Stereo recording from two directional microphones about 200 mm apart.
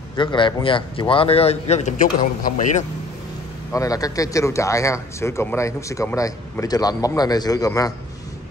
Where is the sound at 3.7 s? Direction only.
15° left (ahead or behind).